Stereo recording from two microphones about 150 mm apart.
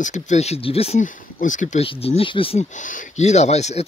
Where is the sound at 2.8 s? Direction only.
55° left (ahead or behind).